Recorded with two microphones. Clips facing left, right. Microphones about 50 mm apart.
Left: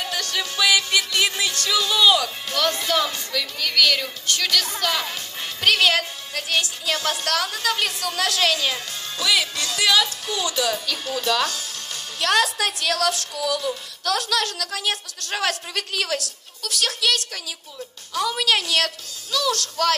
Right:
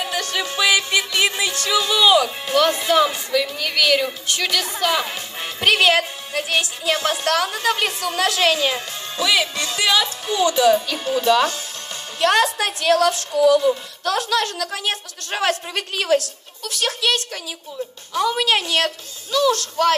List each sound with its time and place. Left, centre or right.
0.0 s music: centre
18.1 s a woman's voice: right
19.3 s music: right